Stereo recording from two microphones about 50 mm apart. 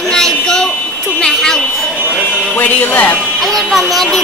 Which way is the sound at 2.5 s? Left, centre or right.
Left.